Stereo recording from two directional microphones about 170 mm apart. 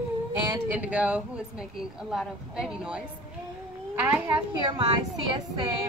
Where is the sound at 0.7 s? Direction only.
10° right (ahead or behind).